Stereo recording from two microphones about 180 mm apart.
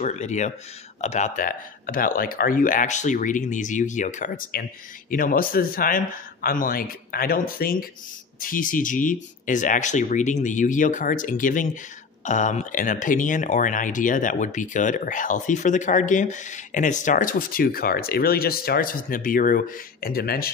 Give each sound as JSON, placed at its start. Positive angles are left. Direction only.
{"t": 0.0, "sound": "speech", "side_deg": 40}